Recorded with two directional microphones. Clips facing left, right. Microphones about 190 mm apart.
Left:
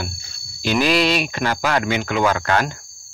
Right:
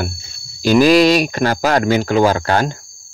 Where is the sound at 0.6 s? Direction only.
40° right (ahead or behind).